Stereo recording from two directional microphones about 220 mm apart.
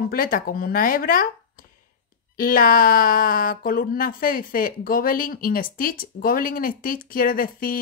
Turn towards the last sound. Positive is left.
turn(degrees=40)  # may be behind; listen again after turning